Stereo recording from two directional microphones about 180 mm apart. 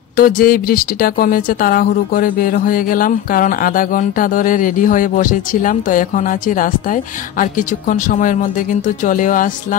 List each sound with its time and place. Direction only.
0.1 s speech: 50° left (ahead or behind)